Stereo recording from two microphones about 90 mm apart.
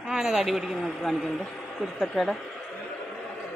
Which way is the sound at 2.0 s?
Centre (ahead or behind).